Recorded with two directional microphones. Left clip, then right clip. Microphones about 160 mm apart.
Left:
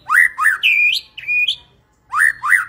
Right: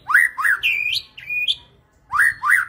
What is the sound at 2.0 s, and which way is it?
Whistling, 15° right (ahead or behind).